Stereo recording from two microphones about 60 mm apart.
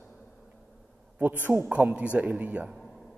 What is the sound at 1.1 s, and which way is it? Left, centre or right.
A man's voice, right.